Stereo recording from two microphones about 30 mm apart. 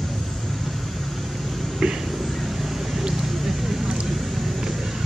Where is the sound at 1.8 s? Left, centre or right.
Right.